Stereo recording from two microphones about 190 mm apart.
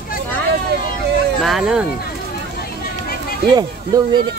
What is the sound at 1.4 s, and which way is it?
Speech, centre (ahead or behind).